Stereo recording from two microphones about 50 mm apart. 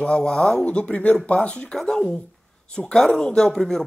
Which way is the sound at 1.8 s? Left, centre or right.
Centre.